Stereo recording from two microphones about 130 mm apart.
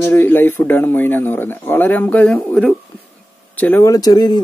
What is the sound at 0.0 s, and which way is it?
Speech, 15° left (ahead or behind).